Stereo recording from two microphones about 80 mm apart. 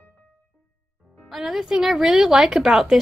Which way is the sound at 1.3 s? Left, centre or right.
Centre.